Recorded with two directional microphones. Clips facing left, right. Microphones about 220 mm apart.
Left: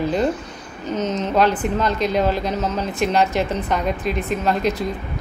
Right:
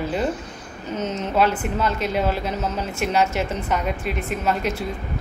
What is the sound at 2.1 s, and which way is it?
Speech, 10° right (ahead or behind).